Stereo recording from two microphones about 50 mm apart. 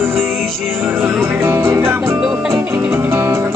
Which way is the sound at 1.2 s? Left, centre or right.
Right.